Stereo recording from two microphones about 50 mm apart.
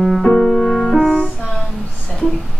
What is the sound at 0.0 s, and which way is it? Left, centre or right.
Music, centre.